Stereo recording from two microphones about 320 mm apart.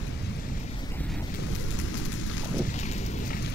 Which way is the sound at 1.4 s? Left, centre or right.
Left.